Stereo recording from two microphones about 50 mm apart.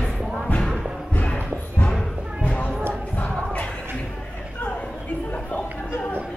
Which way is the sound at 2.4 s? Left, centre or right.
Left.